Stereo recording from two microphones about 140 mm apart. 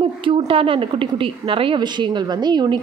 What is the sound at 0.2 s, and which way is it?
A woman's voice, 35° right (ahead or behind).